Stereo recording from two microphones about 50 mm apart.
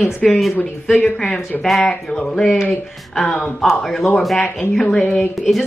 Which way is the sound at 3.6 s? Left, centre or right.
Centre.